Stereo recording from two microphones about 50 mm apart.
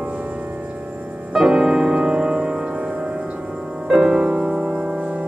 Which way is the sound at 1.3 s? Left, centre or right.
Centre.